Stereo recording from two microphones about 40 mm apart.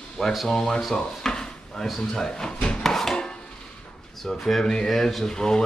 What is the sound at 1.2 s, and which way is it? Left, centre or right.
Dishes, centre.